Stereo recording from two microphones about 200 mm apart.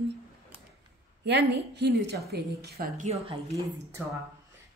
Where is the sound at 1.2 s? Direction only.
60° right (ahead or behind).